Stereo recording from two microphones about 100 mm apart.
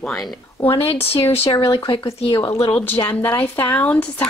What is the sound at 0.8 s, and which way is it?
Speech, 75° left (ahead or behind).